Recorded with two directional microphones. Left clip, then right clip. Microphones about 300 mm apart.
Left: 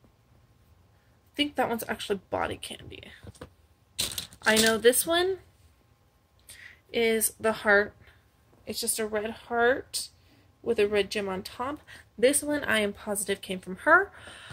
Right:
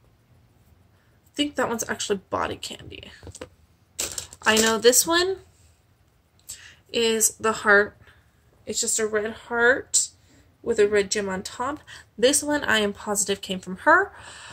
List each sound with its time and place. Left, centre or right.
1.3 s speech: centre
4.5 s speech: centre
7.1 s a woman's voice: centre